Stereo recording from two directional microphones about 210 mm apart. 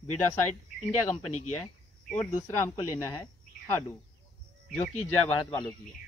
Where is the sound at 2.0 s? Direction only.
10° left (ahead or behind).